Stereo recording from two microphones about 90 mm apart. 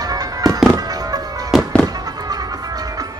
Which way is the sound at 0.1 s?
40° right (ahead or behind).